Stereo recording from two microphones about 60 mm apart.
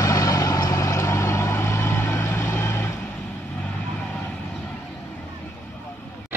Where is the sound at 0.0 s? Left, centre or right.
Left.